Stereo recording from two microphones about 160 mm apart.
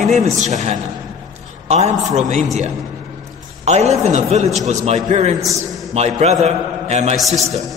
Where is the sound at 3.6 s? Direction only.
45° right (ahead or behind).